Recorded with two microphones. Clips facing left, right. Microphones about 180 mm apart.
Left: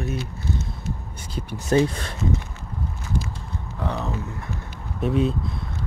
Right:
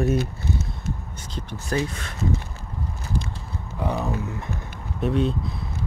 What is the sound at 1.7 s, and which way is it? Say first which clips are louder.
Speech: left 7 dB; 30° left (ahead or behind).